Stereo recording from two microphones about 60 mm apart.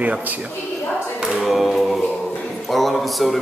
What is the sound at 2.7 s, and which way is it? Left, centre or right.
Speech, centre.